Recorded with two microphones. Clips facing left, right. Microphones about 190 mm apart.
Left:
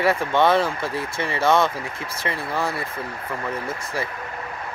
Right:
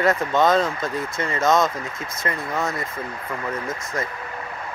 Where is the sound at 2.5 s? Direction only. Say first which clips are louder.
Left 1 dB; 30° left (ahead or behind).